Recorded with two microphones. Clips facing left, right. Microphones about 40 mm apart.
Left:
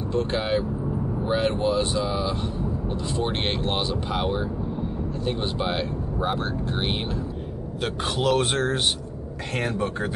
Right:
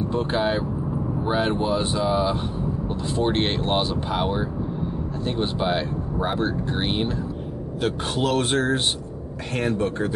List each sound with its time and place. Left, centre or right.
0.1 s speech: centre
0.4 s speech: centre